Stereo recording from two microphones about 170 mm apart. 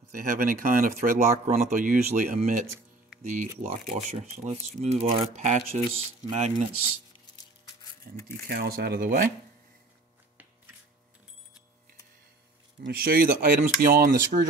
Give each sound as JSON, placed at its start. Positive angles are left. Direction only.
{"t": 0.1, "sound": "speech", "side_deg": -50}
{"t": 8.1, "sound": "speech", "side_deg": -55}
{"t": 12.8, "sound": "speech", "side_deg": -65}